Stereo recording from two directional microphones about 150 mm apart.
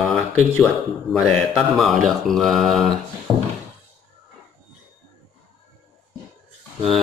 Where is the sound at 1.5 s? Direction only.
Centre (ahead or behind).